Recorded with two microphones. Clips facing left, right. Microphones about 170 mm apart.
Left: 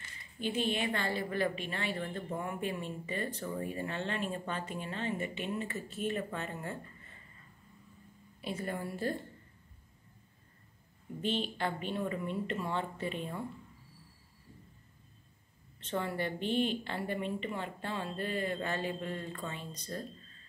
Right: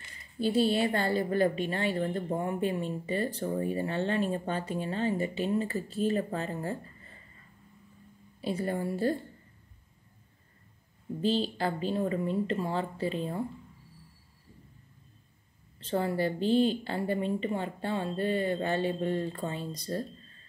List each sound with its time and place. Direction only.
0.4 s a woman's voice: 35° right (ahead or behind)
8.4 s a woman's voice: 30° right (ahead or behind)
11.1 s a woman's voice: 35° right (ahead or behind)
15.8 s a woman's voice: 30° right (ahead or behind)